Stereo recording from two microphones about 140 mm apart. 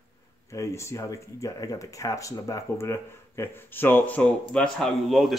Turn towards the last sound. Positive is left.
turn(degrees=0)  # may be behind; listen again after turning